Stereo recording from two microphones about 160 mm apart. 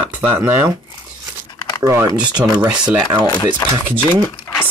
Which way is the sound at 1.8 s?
15° right (ahead or behind).